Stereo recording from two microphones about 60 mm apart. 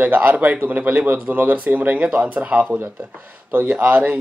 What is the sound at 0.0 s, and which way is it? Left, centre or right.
Speech, right.